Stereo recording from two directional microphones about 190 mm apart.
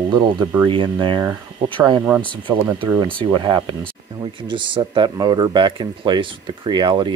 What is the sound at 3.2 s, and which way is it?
Speech, 25° right (ahead or behind).